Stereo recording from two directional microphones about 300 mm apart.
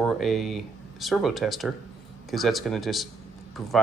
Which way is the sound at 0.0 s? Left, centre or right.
Centre.